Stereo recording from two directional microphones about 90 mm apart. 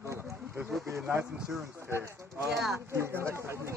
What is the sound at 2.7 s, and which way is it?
Speech, 30° right (ahead or behind).